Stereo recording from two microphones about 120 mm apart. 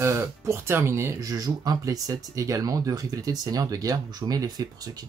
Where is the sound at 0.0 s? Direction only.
25° right (ahead or behind).